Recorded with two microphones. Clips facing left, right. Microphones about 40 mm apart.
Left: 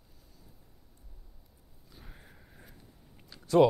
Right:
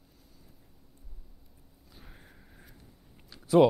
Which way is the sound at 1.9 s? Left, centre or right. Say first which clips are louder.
Even; centre.